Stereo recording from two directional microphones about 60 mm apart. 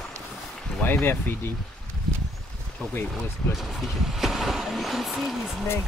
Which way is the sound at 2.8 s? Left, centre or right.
Left.